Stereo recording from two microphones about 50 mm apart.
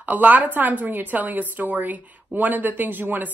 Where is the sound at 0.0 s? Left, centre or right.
Right.